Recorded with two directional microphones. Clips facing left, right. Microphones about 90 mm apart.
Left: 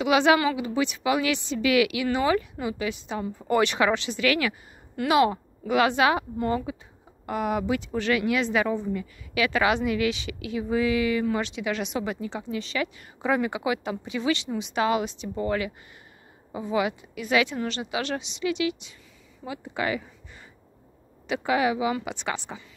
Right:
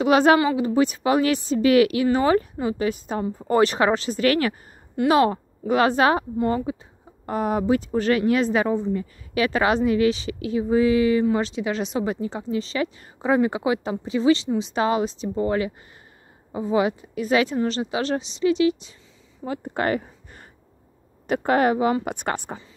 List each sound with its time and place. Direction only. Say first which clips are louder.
0.0 s a woman's voice: right 4 dB; 40° right (ahead or behind)
6.3 s speech: right 4 dB; 25° right (ahead or behind)
19.4 s speech: right 5 dB; 45° right (ahead or behind)
21.5 s speech: right 4 dB; 45° right (ahead or behind)